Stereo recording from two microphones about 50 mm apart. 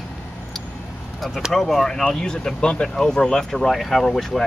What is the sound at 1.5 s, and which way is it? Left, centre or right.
Speech, centre.